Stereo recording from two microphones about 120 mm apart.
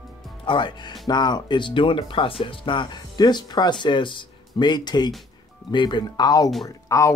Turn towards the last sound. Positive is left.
turn(degrees=25)  # may be behind; listen again after turning